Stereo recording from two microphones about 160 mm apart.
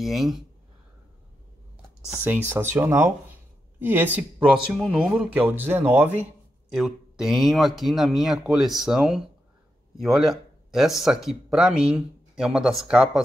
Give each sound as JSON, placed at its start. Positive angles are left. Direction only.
{"t": 0.0, "sound": "speech", "side_deg": 0}
{"t": 2.0, "sound": "speech", "side_deg": -10}
{"t": 6.7, "sound": "speech", "side_deg": 0}